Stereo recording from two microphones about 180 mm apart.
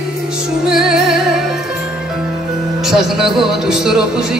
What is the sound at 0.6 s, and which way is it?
Music, 5° right (ahead or behind).